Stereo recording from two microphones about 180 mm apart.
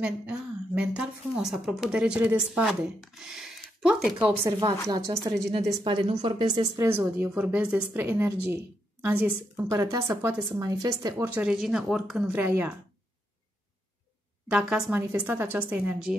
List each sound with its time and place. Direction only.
0.0 s speech: 5° right (ahead or behind)
4.5 s a woman's voice: 20° right (ahead or behind)
11.2 s a woman's voice: 5° right (ahead or behind)
14.5 s a woman's voice: 5° right (ahead or behind)